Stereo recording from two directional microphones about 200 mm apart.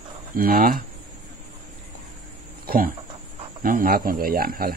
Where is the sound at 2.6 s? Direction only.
45° right (ahead or behind).